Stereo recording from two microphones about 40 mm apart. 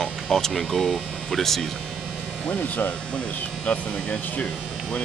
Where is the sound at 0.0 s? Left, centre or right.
Centre.